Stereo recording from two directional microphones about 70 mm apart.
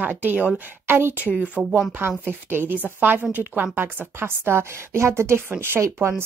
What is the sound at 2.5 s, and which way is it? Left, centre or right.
A woman's voice, right.